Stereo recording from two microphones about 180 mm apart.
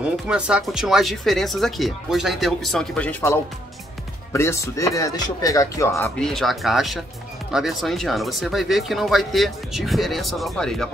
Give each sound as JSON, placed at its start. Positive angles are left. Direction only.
{"t": 0.0, "sound": "speech", "side_deg": -5}
{"t": 6.1, "sound": "speech", "side_deg": 0}